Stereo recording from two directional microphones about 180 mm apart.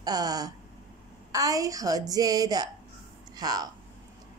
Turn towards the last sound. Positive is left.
turn(degrees=-20)  # may be behind; listen again after turning